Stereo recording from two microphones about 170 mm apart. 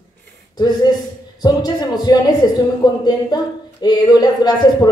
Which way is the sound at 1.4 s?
25° left (ahead or behind).